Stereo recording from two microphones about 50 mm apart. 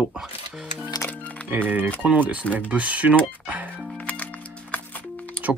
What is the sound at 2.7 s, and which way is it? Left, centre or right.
Speech, right.